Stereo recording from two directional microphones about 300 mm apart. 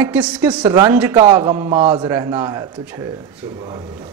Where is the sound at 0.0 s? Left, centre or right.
Centre.